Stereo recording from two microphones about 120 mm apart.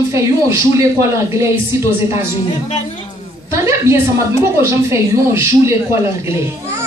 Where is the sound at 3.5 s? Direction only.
25° right (ahead or behind).